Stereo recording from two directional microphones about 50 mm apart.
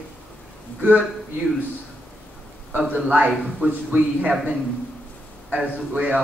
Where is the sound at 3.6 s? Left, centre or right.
Centre.